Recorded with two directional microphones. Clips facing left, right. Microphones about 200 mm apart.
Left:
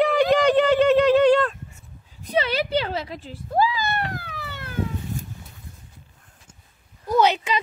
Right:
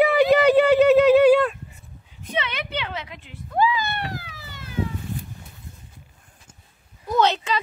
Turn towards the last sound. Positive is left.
turn(degrees=10)  # may be behind; listen again after turning